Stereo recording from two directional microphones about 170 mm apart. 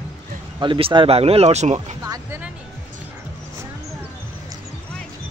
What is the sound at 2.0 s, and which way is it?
Music, 20° right (ahead or behind).